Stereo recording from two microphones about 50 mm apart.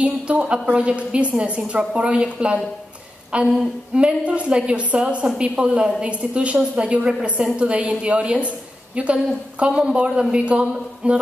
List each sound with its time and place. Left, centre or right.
0.0 s a woman's voice: right